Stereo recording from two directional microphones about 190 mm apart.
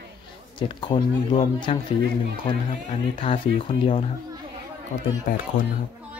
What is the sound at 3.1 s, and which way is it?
Speech, 30° left (ahead or behind).